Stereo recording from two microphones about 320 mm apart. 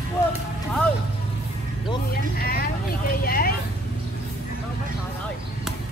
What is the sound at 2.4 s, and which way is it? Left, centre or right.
Vehicle, left.